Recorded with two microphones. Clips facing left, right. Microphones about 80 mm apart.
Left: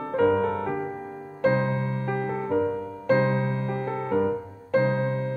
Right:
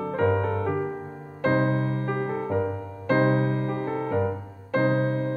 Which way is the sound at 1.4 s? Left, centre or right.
Right.